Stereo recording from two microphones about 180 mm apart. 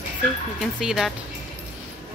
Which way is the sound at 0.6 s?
Centre (ahead or behind).